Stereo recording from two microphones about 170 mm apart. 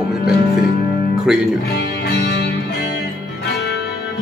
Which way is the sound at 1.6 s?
70° left (ahead or behind).